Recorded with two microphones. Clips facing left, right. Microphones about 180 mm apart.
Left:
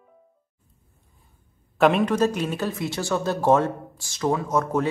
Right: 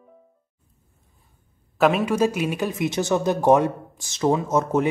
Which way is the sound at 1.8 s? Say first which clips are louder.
Even; centre (ahead or behind).